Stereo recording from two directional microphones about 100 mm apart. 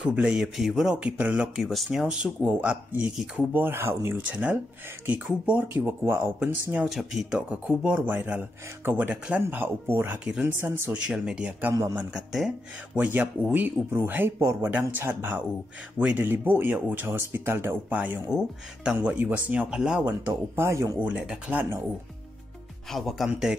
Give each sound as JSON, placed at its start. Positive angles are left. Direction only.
{"t": 0.0, "sound": "speech", "side_deg": -10}
{"t": 2.4, "sound": "speech", "side_deg": -15}
{"t": 6.9, "sound": "speech", "side_deg": 0}
{"t": 11.0, "sound": "speech", "side_deg": -10}
{"t": 12.9, "sound": "speech", "side_deg": -15}
{"t": 21.0, "sound": "speech", "side_deg": -10}
{"t": 21.5, "sound": "speech", "side_deg": -25}
{"t": 22.8, "sound": "speech", "side_deg": 0}